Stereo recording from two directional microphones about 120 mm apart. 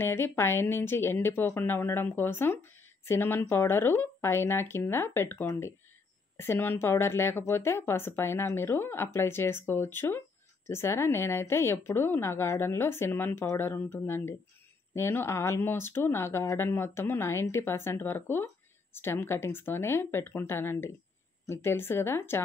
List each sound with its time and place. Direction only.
0.0 s speech: 20° left (ahead or behind)